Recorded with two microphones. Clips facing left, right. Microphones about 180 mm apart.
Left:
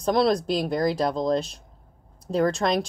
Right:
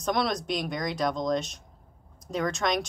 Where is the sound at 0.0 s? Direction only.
30° left (ahead or behind).